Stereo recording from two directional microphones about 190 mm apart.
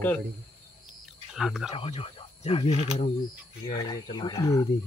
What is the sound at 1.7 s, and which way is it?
Speech, 30° left (ahead or behind).